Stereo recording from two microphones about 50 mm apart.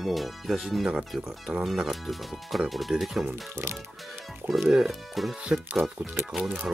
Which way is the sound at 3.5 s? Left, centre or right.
Right.